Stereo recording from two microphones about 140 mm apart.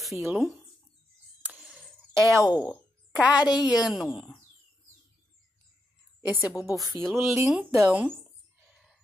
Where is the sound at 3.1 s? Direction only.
10° right (ahead or behind).